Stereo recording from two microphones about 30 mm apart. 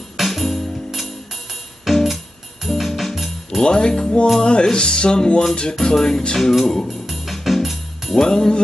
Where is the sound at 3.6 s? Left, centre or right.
Left.